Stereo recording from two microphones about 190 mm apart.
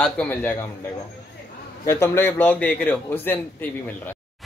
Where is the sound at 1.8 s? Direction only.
15° left (ahead or behind).